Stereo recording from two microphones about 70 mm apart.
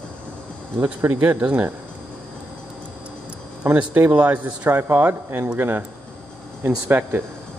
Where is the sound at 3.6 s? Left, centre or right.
Right.